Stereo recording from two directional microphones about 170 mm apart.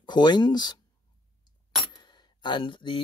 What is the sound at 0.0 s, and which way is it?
Speech, 25° left (ahead or behind).